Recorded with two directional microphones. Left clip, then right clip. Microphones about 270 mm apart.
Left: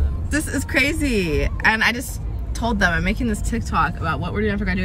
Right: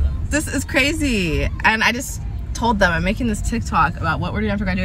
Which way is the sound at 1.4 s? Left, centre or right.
Centre.